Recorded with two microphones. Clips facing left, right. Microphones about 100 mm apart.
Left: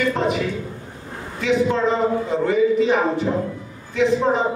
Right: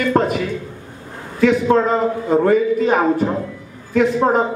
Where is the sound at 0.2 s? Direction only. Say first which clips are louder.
Right 5 dB; 50° right (ahead or behind).